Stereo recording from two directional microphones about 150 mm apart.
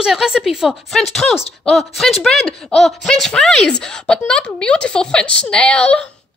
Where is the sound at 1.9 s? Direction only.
Centre (ahead or behind).